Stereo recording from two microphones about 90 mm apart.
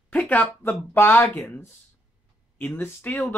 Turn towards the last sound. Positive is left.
turn(degrees=20)  # may be behind; listen again after turning